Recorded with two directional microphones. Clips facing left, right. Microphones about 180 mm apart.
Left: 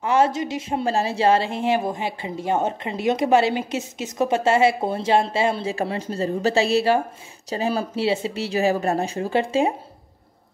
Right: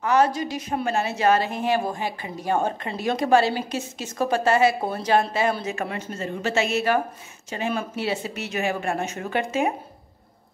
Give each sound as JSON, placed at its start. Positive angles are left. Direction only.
{"t": 0.0, "sound": "a woman's voice", "side_deg": 25}